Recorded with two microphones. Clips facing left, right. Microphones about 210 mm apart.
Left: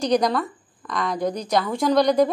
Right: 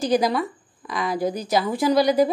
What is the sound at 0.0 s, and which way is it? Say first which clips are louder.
A woman's voice: even; 5° right (ahead or behind).